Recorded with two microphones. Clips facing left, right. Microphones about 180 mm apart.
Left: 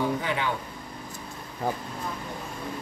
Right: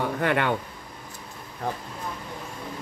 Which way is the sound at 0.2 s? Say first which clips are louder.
Right 6 dB; 60° right (ahead or behind).